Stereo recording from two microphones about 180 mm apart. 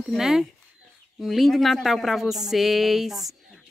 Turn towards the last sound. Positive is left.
turn(degrees=0)  # may be behind; listen again after turning